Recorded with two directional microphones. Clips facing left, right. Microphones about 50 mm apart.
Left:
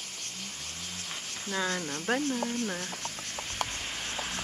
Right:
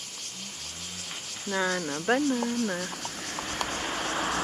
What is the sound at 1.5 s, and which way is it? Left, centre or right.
Speech, centre.